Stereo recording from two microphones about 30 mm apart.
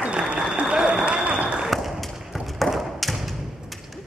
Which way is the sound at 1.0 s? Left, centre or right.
Right.